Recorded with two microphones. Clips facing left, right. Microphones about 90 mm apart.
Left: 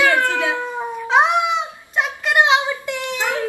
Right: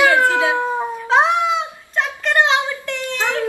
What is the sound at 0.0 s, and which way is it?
Howl, 20° right (ahead or behind).